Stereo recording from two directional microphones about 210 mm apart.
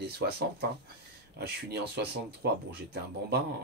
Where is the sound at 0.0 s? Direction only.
50° right (ahead or behind).